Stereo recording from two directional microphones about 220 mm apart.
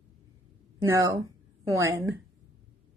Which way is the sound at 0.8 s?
15° right (ahead or behind).